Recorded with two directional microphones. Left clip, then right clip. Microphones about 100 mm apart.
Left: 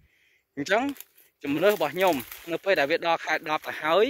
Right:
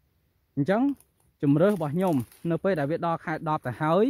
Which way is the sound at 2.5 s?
50° right (ahead or behind).